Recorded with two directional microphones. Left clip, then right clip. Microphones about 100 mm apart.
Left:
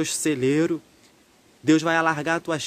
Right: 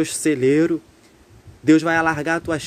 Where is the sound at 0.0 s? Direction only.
20° left (ahead or behind).